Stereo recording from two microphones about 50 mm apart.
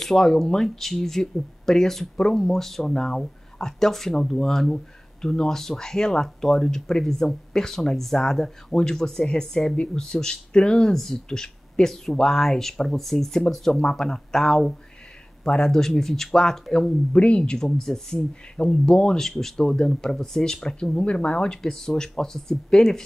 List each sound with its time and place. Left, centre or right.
0.0 s speech: centre
17.1 s speech: left
17.4 s speech: centre
18.6 s speech: centre